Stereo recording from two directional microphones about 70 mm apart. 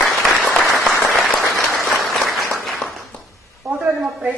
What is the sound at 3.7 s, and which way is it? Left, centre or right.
Speech, centre.